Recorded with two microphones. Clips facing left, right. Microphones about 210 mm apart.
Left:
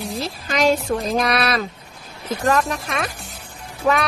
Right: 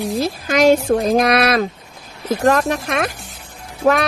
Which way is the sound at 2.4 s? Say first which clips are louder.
Right 4 dB; 65° right (ahead or behind).